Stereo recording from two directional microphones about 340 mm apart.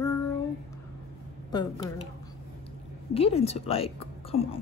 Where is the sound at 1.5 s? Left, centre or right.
Centre.